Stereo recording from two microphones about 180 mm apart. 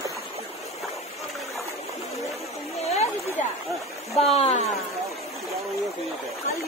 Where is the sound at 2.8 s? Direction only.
35° left (ahead or behind).